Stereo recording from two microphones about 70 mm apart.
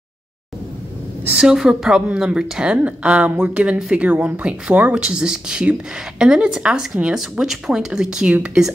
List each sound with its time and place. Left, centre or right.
1.3 s a woman's voice: centre